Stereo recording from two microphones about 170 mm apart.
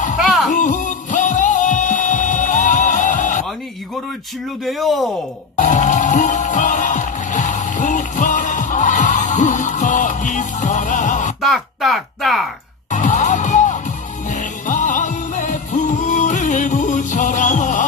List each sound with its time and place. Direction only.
0.2 s music: centre (ahead or behind)
0.5 s music: 50° left (ahead or behind)
4.6 s speech: centre (ahead or behind)
5.6 s music: 45° left (ahead or behind)
11.4 s a sound: centre (ahead or behind)
12.9 s music: 45° left (ahead or behind)